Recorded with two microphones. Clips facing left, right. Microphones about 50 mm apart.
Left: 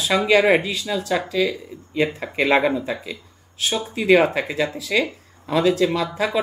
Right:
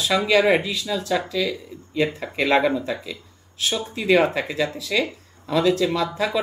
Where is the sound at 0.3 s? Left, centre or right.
Centre.